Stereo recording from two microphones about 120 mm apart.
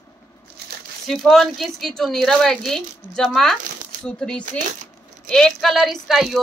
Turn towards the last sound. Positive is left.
turn(degrees=0)  # may be behind; listen again after turning